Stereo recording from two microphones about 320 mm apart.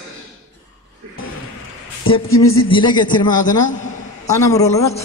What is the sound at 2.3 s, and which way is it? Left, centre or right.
Speech, left.